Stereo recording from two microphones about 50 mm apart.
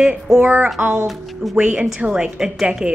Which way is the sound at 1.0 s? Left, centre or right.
Centre.